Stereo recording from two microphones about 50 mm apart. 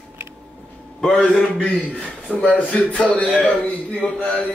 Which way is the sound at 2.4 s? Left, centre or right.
Left.